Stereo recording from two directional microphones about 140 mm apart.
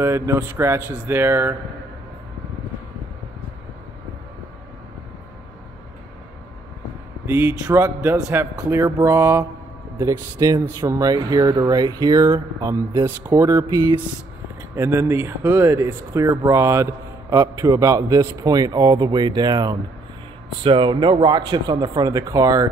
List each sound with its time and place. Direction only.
0.0 s speech: 20° right (ahead or behind)
7.2 s speech: 15° right (ahead or behind)
14.8 s speech: 15° right (ahead or behind)